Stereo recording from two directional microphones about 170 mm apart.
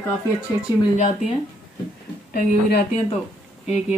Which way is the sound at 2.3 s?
55° left (ahead or behind).